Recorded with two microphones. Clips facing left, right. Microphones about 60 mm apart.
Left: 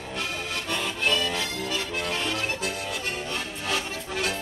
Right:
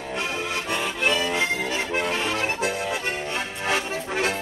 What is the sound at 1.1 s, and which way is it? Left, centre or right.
Music, right.